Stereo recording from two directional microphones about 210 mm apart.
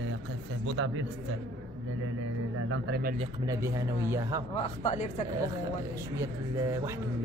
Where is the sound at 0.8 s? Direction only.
75° right (ahead or behind).